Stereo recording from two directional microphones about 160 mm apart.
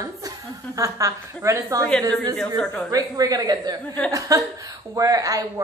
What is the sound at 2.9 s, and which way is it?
A woman's voice, 20° right (ahead or behind).